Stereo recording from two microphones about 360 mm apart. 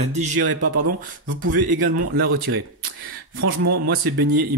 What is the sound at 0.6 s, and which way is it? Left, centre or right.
Speech, right.